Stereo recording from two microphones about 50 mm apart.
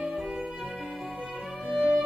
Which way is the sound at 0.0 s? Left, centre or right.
Centre.